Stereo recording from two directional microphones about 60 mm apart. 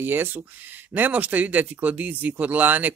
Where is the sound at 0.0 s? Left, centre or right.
Right.